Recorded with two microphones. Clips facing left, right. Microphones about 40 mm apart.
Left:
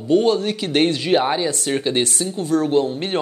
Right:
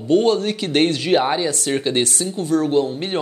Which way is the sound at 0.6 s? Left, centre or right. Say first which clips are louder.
Even; left.